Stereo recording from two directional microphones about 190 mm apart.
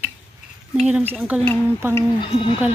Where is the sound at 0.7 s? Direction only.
5° right (ahead or behind).